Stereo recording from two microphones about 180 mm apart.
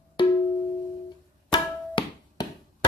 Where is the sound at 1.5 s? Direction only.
25° left (ahead or behind).